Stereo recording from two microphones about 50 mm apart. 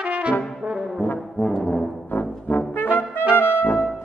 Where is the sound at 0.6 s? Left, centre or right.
Centre.